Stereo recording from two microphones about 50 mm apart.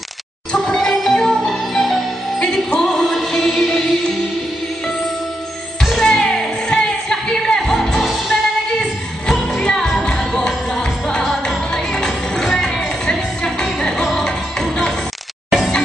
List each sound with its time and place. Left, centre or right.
0.6 s music: centre
5.9 s music: centre